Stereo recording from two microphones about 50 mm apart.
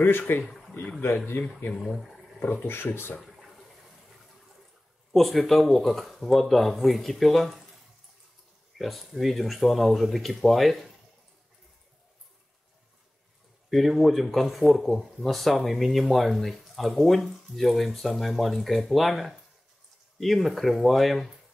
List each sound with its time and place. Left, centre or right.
0.4 s a sound: centre
1.0 s speech: left
1.7 s speech: centre
2.4 s speech: left
3.3 s toilet flush: centre
5.1 s speech: centre
8.7 s speech: centre
13.7 s speech: centre